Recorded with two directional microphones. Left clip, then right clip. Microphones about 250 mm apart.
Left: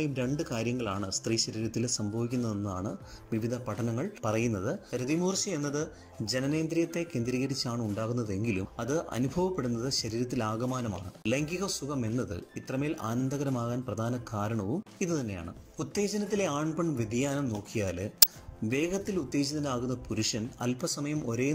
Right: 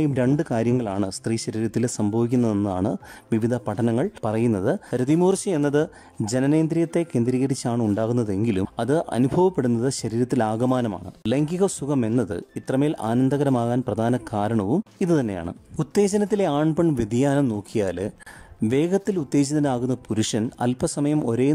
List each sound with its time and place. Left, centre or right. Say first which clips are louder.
0.0 s speech: right 10 dB; right